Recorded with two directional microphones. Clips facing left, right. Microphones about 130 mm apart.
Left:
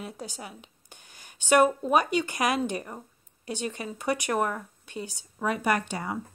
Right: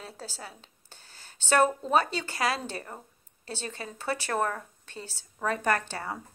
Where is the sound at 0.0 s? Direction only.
15° left (ahead or behind).